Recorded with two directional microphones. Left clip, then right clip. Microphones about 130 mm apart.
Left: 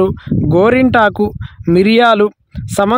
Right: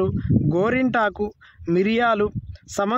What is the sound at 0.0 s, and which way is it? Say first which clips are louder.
Speech: left 8 dB; 90° left.